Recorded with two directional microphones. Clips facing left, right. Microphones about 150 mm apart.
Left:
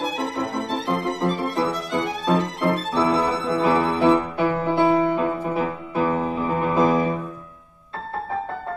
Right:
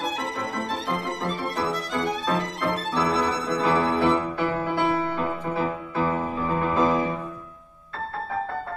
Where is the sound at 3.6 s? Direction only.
20° left (ahead or behind).